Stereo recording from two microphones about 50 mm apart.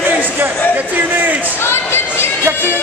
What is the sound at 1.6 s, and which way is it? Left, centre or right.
Speech, left.